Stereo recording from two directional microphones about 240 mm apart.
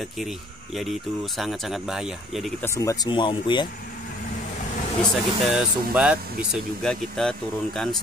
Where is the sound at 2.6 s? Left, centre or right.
Centre.